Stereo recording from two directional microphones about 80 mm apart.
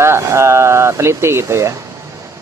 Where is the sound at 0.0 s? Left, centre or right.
Right.